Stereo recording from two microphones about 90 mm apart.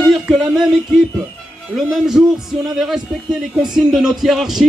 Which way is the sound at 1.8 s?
5° right (ahead or behind).